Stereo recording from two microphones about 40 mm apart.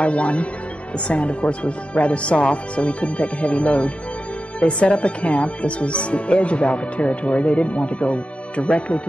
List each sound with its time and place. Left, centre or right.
0.0 s speech: left